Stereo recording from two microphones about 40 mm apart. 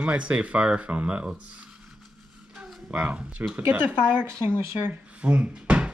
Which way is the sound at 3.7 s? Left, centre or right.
Right.